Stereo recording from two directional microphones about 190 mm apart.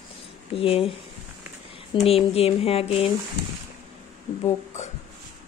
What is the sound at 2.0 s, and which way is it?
A woman's voice, 30° left (ahead or behind).